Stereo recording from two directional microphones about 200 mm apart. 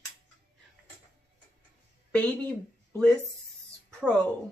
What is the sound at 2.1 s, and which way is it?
Speech, 5° left (ahead or behind).